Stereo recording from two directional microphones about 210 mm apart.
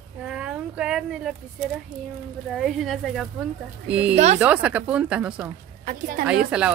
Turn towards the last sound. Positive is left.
turn(degrees=-5)  # may be behind; listen again after turning